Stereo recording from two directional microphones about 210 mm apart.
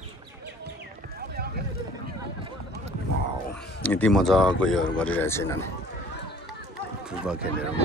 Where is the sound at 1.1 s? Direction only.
45° right (ahead or behind).